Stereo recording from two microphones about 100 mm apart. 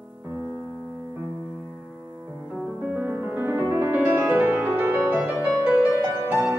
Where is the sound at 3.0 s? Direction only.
20° right (ahead or behind).